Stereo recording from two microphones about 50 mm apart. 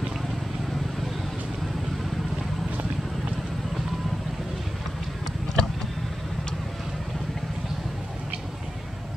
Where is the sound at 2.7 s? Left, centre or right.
Right.